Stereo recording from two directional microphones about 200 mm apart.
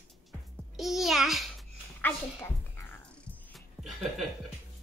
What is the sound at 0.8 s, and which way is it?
Speech, centre (ahead or behind).